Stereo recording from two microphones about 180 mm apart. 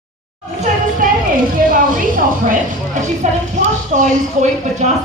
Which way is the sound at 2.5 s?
45° right (ahead or behind).